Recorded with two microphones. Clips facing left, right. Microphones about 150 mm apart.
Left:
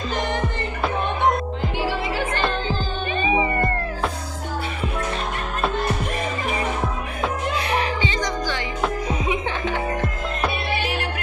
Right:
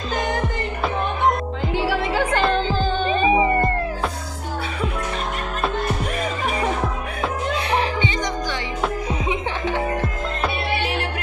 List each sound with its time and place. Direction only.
3.1 s music: 30° right (ahead or behind)
8.0 s music: 20° right (ahead or behind)